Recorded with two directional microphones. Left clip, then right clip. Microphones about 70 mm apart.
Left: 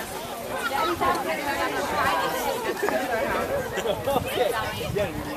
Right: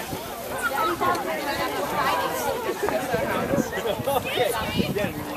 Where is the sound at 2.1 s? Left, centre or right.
Left.